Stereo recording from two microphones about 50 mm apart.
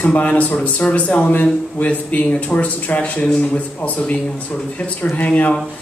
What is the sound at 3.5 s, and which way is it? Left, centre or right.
A man's voice, left.